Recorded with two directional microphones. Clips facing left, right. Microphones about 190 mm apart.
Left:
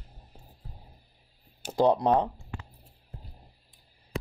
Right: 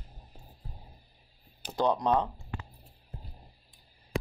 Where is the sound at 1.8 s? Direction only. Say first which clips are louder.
Left 4 dB; 30° left (ahead or behind).